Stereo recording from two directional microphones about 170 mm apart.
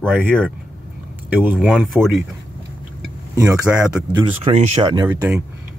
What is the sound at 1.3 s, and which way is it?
Speech, 10° right (ahead or behind).